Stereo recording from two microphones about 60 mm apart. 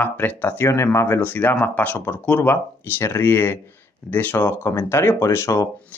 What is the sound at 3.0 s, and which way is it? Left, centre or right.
Speech, left.